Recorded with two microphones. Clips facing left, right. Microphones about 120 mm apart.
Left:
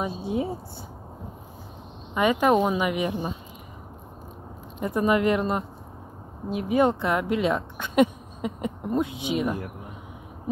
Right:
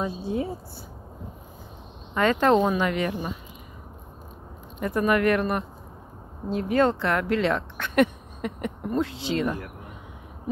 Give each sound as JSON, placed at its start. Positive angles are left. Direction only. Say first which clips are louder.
{"t": 0.0, "sound": "speech", "louder": "even", "side_deg": 20}
{"t": 2.1, "sound": "speech", "louder": "even", "side_deg": 10}
{"t": 4.7, "sound": "speech", "louder": "even", "side_deg": 20}